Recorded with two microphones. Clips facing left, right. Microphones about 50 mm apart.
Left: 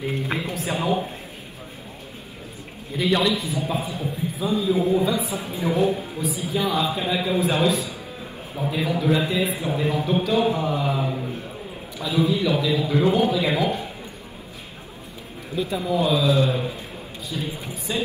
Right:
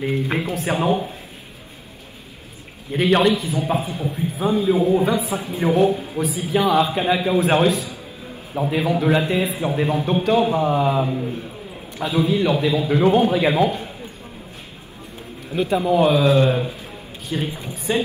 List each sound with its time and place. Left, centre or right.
0.0 s a sound: right
2.9 s a man's voice: right
15.5 s a man's voice: right